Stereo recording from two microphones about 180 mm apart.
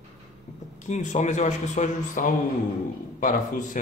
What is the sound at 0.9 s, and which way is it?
A man's voice, 40° left (ahead or behind).